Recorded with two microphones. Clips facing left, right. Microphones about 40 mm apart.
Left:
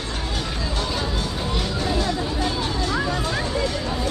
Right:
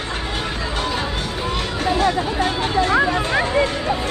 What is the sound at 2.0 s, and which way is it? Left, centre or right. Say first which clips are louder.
Speech: right 5 dB; right.